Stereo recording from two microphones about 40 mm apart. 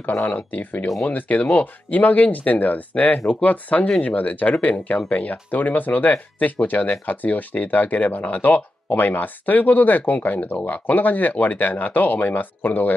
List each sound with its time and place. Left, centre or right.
0.0 s speech: left